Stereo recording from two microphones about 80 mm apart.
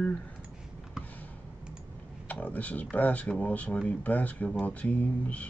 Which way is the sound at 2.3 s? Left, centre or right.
Left.